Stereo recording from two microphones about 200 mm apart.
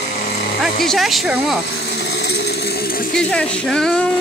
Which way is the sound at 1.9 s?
60° left (ahead or behind).